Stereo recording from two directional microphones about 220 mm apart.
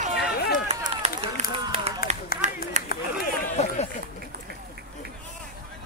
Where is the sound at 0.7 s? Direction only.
30° right (ahead or behind).